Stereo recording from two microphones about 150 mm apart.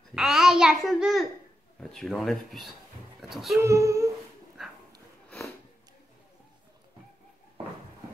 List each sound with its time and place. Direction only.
0.1 s a child's voice: 5° right (ahead or behind)
3.6 s speech: 20° right (ahead or behind)
4.6 s dog: 5° right (ahead or behind)